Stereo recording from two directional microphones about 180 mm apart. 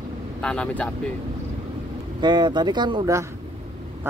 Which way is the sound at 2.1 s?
25° right (ahead or behind).